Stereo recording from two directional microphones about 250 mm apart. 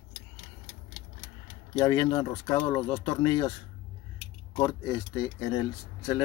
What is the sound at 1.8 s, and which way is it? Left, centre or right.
Speech, centre.